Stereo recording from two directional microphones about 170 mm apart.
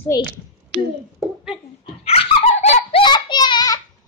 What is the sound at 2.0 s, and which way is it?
Dog, 40° left (ahead or behind).